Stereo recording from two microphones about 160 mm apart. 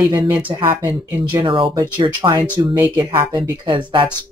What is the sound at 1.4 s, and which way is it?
Speech, 30° right (ahead or behind).